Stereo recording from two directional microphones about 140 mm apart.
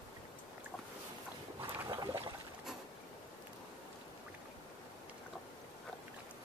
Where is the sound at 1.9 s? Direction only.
30° right (ahead or behind).